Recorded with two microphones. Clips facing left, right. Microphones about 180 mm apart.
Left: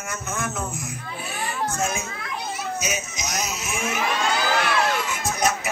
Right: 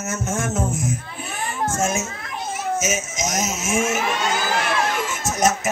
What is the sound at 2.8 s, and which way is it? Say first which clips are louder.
Speech: right 5 dB; 45° right (ahead or behind).